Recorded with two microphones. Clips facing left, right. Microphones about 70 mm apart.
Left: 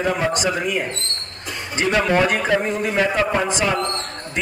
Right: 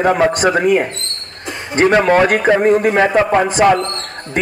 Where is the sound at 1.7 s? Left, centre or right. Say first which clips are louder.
Right 7 dB; right.